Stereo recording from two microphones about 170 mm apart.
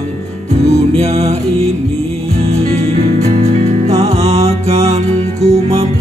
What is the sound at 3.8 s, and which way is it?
Music, 35° right (ahead or behind).